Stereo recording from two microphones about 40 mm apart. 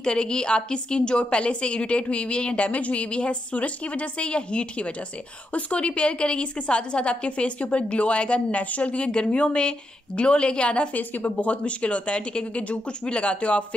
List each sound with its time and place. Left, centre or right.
0.0 s a woman's voice: left
11.0 s speech: left